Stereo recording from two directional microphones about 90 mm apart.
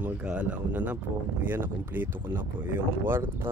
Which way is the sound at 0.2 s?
15° right (ahead or behind).